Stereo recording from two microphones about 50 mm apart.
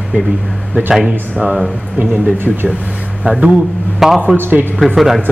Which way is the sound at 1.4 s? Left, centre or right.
Centre.